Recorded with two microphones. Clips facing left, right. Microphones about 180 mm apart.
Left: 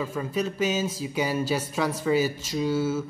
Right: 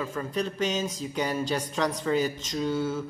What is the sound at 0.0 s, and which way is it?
Speech, 10° left (ahead or behind).